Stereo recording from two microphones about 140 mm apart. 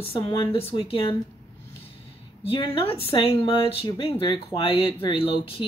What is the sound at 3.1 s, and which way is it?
Speech, 40° left (ahead or behind).